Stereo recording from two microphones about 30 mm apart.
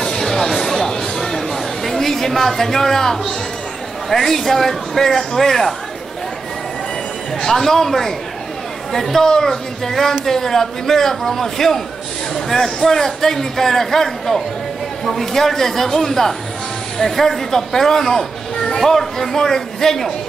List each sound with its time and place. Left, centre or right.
0.0 s a sound: centre
4.1 s a man's voice: centre
7.4 s a man's voice: centre